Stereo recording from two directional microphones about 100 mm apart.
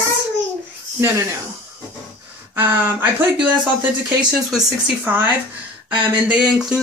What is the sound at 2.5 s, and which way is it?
Speech, 20° right (ahead or behind).